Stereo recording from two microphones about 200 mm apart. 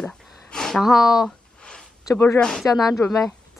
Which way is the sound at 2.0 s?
15° left (ahead or behind).